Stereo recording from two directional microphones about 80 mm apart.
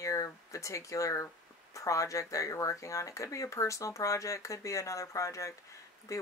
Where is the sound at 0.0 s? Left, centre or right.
Left.